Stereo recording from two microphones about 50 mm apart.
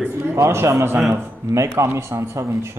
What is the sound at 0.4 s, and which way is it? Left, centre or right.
A man's voice, right.